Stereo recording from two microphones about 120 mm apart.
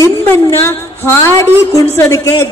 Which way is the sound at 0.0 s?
20° left (ahead or behind).